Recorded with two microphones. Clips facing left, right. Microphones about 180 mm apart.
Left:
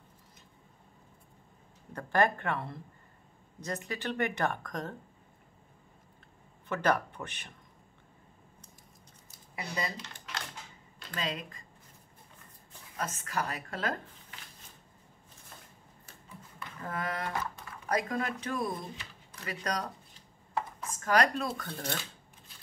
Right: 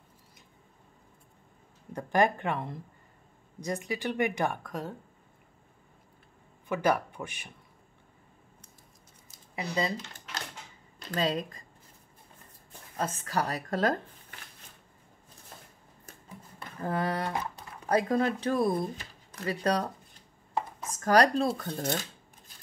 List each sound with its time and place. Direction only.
2.0 s speech: 15° right (ahead or behind)
6.7 s speech: 10° right (ahead or behind)
9.6 s speech: 25° right (ahead or behind)
11.0 s speech: 40° right (ahead or behind)
12.9 s speech: 30° right (ahead or behind)
16.5 s a sound: 35° right (ahead or behind)
17.6 s speech: 30° right (ahead or behind)
20.9 s speech: 35° right (ahead or behind)